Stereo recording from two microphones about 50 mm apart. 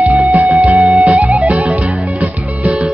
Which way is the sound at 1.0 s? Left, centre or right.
Right.